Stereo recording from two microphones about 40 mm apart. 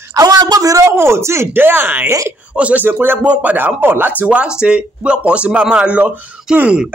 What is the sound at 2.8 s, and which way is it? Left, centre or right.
Speech, right.